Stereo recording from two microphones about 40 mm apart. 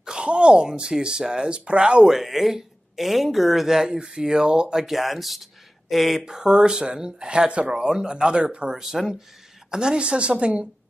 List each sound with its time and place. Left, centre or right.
0.0 s a sound: centre
0.3 s speech: right
2.0 s speech: centre
4.8 s speech: centre
6.2 s speech: centre
8.7 s speech: centre
9.7 s speech: centre